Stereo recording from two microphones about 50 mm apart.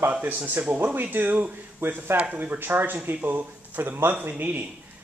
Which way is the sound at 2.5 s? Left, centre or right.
Right.